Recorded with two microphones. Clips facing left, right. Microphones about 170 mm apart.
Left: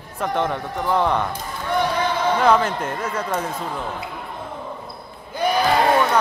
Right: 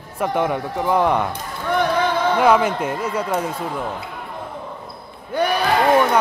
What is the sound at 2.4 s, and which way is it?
Speech, 10° right (ahead or behind).